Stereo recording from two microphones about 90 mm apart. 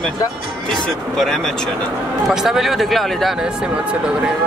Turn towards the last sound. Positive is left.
turn(degrees=-10)  # may be behind; listen again after turning